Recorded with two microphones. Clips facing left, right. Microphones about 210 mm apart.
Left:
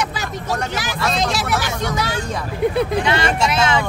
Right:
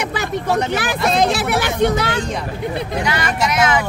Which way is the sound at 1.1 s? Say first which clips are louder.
Right 5 dB; 55° right (ahead or behind).